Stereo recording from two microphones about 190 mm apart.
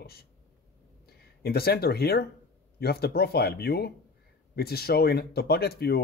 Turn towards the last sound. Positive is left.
turn(degrees=55)  # may be behind; listen again after turning